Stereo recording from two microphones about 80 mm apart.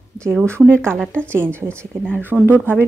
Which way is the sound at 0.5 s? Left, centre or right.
Right.